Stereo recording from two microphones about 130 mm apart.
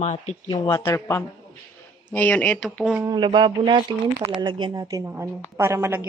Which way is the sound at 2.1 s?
10° left (ahead or behind).